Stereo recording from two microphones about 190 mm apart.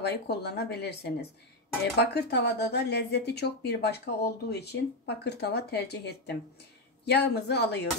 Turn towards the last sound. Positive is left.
turn(degrees=60)  # may be behind; listen again after turning